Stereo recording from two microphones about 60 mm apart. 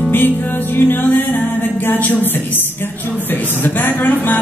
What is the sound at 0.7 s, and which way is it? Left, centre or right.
Music, left.